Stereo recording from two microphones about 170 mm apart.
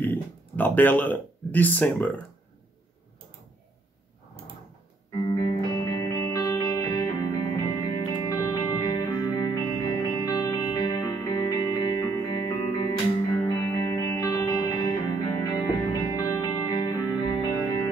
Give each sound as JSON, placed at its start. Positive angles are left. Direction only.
{"t": 0.0, "sound": "speech", "side_deg": 10}
{"t": 5.3, "sound": "music", "side_deg": 20}
{"t": 13.9, "sound": "music", "side_deg": 20}